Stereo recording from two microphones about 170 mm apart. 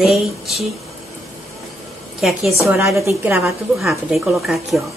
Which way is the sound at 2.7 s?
15° right (ahead or behind).